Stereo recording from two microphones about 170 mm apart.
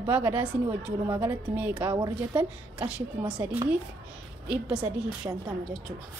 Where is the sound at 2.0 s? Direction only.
25° right (ahead or behind).